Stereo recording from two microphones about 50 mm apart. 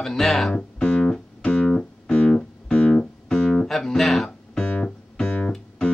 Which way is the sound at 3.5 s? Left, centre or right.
Centre.